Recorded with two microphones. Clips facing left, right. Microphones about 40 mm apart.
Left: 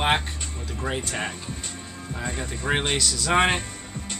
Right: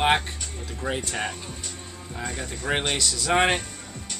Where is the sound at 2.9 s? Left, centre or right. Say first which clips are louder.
Left 1 dB; centre.